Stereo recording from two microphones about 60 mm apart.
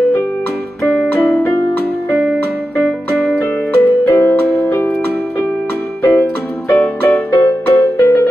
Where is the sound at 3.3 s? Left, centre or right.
Left.